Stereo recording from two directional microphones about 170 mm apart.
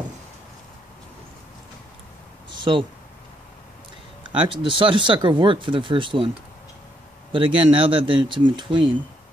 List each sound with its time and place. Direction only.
2.5 s a sound: 30° right (ahead or behind)
4.4 s speech: 30° right (ahead or behind)
7.3 s speech: 30° right (ahead or behind)